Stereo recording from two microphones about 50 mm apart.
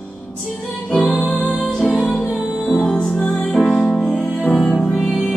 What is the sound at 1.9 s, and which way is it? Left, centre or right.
Music, centre.